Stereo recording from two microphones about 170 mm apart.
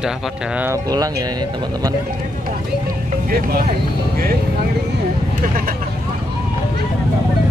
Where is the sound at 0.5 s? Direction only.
15° right (ahead or behind).